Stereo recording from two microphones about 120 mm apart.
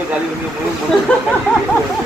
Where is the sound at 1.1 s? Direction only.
10° left (ahead or behind).